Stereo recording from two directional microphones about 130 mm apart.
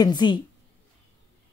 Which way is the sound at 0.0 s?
35° left (ahead or behind).